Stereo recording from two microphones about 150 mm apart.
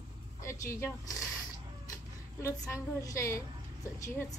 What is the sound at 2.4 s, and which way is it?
A woman's voice, 20° left (ahead or behind).